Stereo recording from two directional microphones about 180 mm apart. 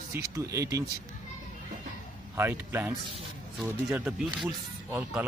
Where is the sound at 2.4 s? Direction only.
10° right (ahead or behind).